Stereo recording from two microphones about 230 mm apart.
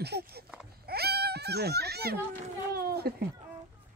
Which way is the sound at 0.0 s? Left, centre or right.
Right.